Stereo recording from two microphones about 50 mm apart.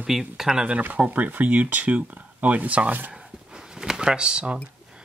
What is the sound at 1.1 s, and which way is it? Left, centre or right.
Speech, right.